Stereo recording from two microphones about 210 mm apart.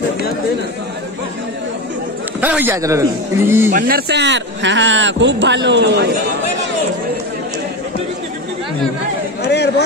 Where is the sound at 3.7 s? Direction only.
45° right (ahead or behind).